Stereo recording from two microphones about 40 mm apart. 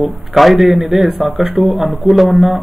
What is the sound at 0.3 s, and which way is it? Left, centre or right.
A man's voice, centre.